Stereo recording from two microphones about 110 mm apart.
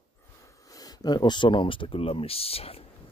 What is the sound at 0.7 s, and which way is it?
Speech, 35° left (ahead or behind).